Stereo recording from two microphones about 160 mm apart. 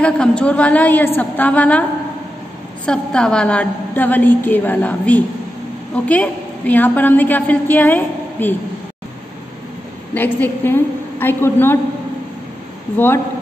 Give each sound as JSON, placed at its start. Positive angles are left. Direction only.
{"t": 0.0, "sound": "a woman's voice", "side_deg": 5}
{"t": 10.1, "sound": "a woman's voice", "side_deg": 10}
{"t": 12.9, "sound": "a woman's voice", "side_deg": 10}